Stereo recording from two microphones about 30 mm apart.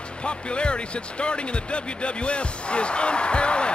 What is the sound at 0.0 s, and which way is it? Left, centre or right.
Music, left.